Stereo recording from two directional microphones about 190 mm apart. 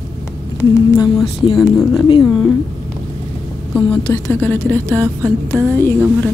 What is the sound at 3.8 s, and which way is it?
Speech, 15° left (ahead or behind).